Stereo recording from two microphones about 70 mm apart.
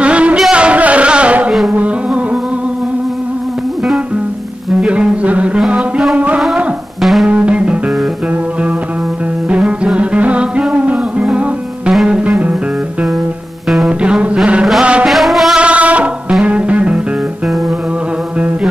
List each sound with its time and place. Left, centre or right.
0.0 s a sound: centre
4.7 s a sound: centre
5.7 s music: centre
7.0 s music: centre
7.2 s music: centre
9.5 s music: centre
11.9 s music: centre
12.3 s music: centre
13.8 s music: centre
15.0 s music: centre
15.6 s music: centre